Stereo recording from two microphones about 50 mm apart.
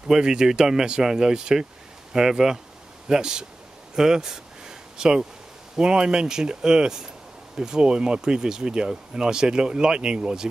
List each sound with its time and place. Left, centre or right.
0.1 s speech: centre
3.9 s a sound: centre
5.8 s speech: centre